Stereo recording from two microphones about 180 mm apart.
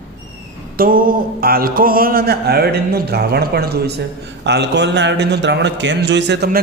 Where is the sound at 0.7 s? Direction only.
50° right (ahead or behind).